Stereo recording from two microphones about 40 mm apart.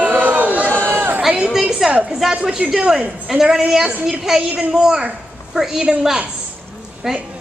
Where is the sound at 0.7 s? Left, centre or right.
Left.